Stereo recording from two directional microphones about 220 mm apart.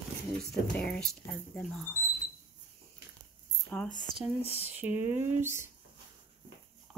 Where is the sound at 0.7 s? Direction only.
5° left (ahead or behind).